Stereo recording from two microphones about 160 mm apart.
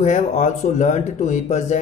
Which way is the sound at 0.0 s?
45° left (ahead or behind).